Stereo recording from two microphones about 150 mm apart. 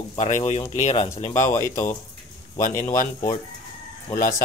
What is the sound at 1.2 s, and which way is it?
Speech, 60° left (ahead or behind).